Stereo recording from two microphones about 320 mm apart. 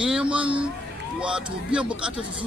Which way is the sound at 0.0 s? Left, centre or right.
Centre.